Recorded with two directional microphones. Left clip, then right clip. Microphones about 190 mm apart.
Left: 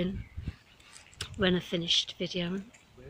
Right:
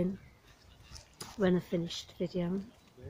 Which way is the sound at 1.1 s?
5° right (ahead or behind).